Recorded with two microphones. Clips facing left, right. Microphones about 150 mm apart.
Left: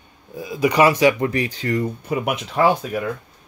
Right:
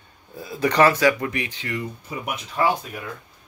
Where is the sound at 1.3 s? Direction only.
40° left (ahead or behind).